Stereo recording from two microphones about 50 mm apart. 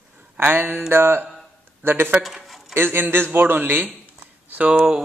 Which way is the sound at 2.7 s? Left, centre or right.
Right.